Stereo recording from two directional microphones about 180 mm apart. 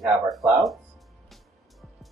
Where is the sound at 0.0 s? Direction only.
Centre (ahead or behind).